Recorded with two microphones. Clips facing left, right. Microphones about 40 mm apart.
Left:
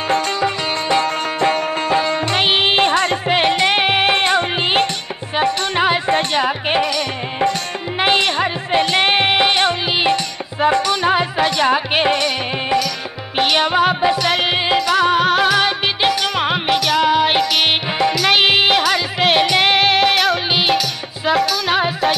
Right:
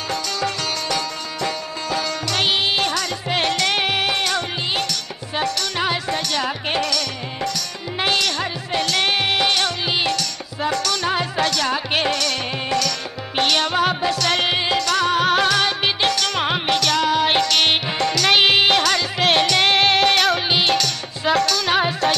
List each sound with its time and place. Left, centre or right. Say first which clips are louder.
0.4 s music: left 5 dB; left
1.0 s music: left 8 dB; left; by 22.1 s centre